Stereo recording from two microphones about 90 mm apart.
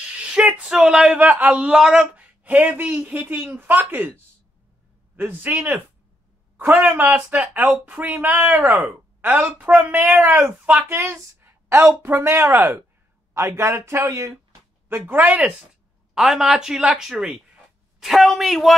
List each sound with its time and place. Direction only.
0.2 s speech: 10° right (ahead or behind)
5.1 s a man's voice: 20° right (ahead or behind)
11.0 s speech: 30° right (ahead or behind)
14.9 s speech: 20° right (ahead or behind)
16.2 s speech: 5° right (ahead or behind)